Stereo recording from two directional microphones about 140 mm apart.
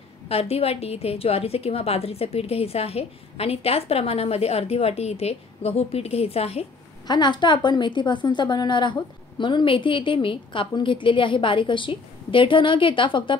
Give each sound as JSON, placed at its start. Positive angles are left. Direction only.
{"t": 0.3, "sound": "a woman's voice", "side_deg": 45}
{"t": 7.1, "sound": "a woman's voice", "side_deg": 30}